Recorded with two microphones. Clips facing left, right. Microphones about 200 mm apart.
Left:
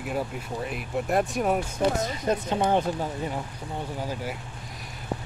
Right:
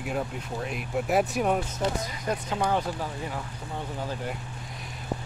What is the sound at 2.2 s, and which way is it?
Speech, 25° left (ahead or behind).